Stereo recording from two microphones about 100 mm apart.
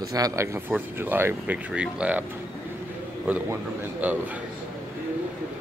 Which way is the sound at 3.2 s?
15° right (ahead or behind).